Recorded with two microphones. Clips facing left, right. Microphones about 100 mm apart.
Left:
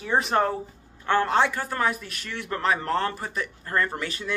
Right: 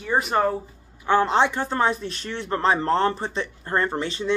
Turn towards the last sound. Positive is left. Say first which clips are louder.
# right 3 dB
turn(degrees=-25)  # may be behind; listen again after turning